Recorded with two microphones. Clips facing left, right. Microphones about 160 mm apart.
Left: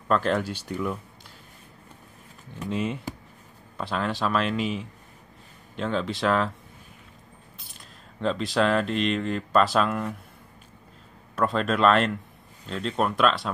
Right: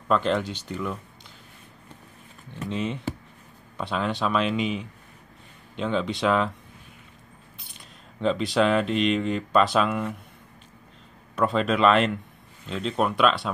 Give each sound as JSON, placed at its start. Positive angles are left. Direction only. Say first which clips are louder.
{"t": 0.1, "sound": "speech", "louder": "right 1 dB", "side_deg": 5}
{"t": 2.6, "sound": "speech", "louder": "even", "side_deg": 5}
{"t": 8.2, "sound": "speech", "louder": "right 2 dB", "side_deg": 0}
{"t": 11.3, "sound": "speech", "louder": "right 1 dB", "side_deg": 0}